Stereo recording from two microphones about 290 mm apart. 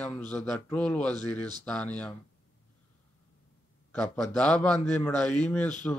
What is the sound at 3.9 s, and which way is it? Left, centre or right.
A man's voice, centre.